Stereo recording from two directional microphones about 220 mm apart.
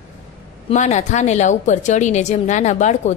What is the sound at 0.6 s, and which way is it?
A woman's voice, 30° left (ahead or behind).